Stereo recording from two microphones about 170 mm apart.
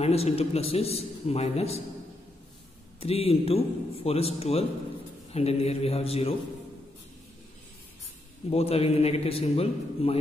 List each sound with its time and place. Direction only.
0.0 s a man's voice: 35° left (ahead or behind)
3.0 s a man's voice: 35° left (ahead or behind)
8.5 s a man's voice: 35° left (ahead or behind)